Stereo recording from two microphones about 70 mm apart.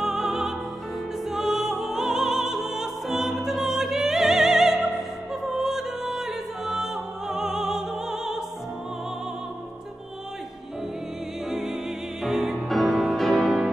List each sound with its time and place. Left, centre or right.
0.0 s music: centre
4.8 s opera: centre
11.5 s music: centre